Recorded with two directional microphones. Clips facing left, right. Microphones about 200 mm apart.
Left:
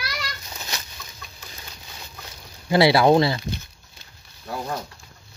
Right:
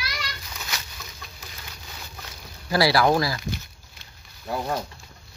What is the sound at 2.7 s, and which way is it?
Speech, 25° left (ahead or behind).